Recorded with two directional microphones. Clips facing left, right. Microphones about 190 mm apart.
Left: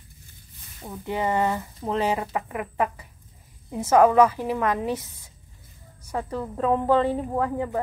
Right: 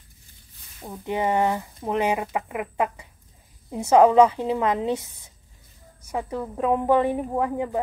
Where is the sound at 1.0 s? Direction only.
15° right (ahead or behind).